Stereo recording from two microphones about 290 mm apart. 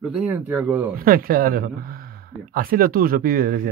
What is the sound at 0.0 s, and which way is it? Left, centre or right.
Speech, centre.